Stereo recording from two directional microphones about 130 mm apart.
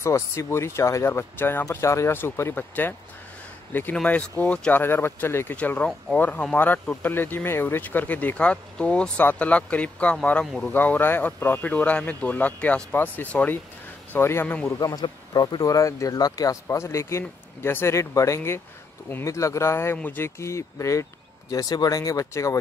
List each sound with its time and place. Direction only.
0.0 s speech: 20° left (ahead or behind)
14.8 s speech: 30° left (ahead or behind)